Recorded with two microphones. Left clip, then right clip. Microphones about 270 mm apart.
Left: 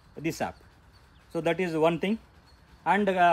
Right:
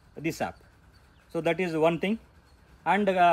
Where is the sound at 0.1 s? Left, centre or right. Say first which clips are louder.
Even; centre.